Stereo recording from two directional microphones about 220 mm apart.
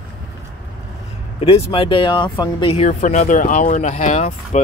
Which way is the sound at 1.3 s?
25° left (ahead or behind).